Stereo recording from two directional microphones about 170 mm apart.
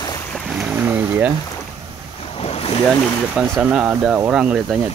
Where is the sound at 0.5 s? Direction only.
10° right (ahead or behind).